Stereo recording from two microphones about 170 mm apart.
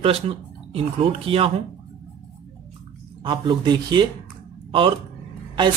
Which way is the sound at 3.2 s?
25° right (ahead or behind).